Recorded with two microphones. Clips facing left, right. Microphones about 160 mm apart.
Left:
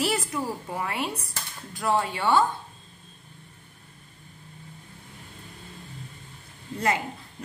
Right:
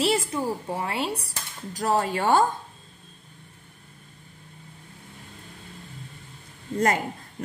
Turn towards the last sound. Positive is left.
turn(degrees=-45)  # may be behind; listen again after turning